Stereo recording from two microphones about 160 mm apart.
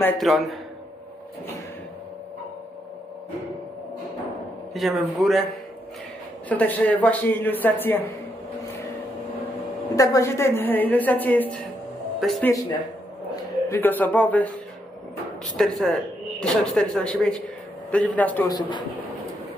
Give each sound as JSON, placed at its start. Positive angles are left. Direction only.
{"t": 0.2, "sound": "speech", "side_deg": 0}
{"t": 4.7, "sound": "speech", "side_deg": 0}
{"t": 6.5, "sound": "a woman's voice", "side_deg": 10}
{"t": 9.9, "sound": "a woman's voice", "side_deg": 20}
{"t": 13.7, "sound": "a woman's voice", "side_deg": 10}
{"t": 15.5, "sound": "a woman's voice", "side_deg": 5}
{"t": 18.5, "sound": "speech", "side_deg": 30}